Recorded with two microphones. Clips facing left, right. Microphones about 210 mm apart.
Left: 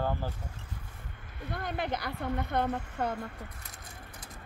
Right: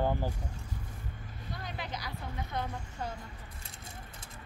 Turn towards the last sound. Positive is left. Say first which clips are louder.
# left 7 dB
turn(degrees=60)  # may be behind; listen again after turning